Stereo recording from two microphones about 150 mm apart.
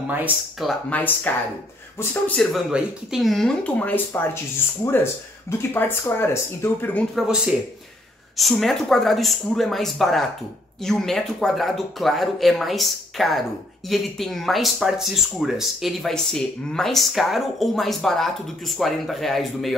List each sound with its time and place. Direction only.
0.6 s speech: 5° left (ahead or behind)
2.5 s speech: 5° right (ahead or behind); by 4.4 s 15° left (ahead or behind)
5.5 s speech: 15° left (ahead or behind)
7.2 s speech: 5° right (ahead or behind)